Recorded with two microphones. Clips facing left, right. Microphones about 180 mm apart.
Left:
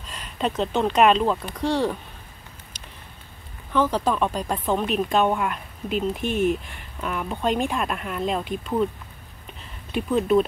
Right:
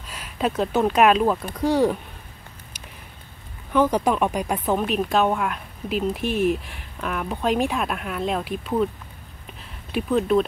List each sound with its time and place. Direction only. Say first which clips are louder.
0.1 s speech: right 2 dB; 5° right (ahead or behind)
3.7 s speech: right 2 dB; 15° right (ahead or behind)
9.9 s speech: even; centre (ahead or behind)